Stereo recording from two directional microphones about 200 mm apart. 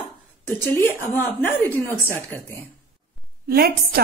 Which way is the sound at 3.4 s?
50° right (ahead or behind).